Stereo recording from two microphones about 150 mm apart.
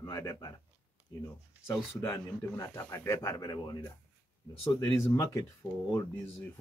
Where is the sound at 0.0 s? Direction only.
20° left (ahead or behind).